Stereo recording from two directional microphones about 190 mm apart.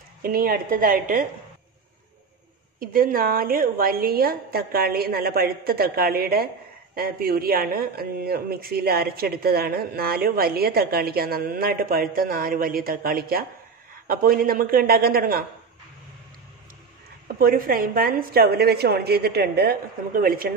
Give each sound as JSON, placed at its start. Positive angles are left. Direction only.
{"t": 0.2, "sound": "speech", "side_deg": -50}
{"t": 2.8, "sound": "speech", "side_deg": -50}
{"t": 17.4, "sound": "speech", "side_deg": -50}